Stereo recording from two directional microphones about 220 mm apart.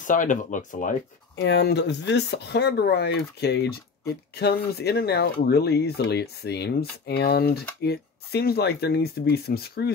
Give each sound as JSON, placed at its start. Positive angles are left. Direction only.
{"t": 0.0, "sound": "speech", "side_deg": 35}
{"t": 1.3, "sound": "speech", "side_deg": 55}